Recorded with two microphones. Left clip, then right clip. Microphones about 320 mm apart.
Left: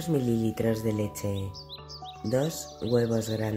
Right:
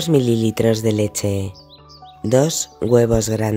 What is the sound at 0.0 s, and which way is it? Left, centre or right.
Speech, right.